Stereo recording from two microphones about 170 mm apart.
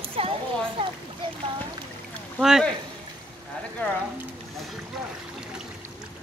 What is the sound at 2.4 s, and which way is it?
Speech, centre (ahead or behind).